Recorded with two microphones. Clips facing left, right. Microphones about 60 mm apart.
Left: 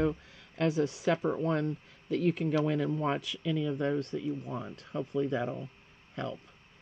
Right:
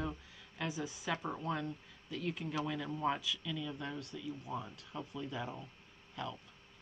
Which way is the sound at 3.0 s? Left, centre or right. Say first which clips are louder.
Left 4 dB; left.